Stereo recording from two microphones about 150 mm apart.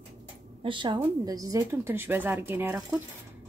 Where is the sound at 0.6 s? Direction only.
35° right (ahead or behind).